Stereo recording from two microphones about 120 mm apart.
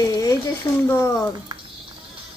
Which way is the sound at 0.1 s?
30° left (ahead or behind).